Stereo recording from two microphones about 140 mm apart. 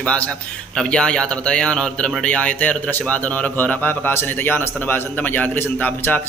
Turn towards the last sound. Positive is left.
turn(degrees=10)  # may be behind; listen again after turning